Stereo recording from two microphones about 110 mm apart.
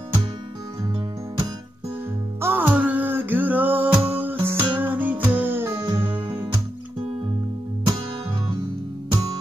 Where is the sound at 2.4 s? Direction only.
15° right (ahead or behind).